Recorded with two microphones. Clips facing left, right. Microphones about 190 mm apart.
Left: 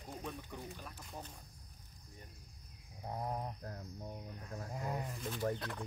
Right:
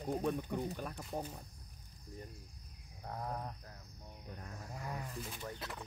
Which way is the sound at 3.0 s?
20° left (ahead or behind).